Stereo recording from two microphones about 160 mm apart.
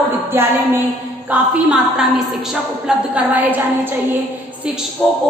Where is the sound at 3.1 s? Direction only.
10° right (ahead or behind).